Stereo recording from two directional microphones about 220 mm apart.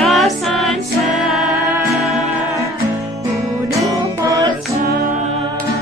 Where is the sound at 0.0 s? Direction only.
Centre (ahead or behind).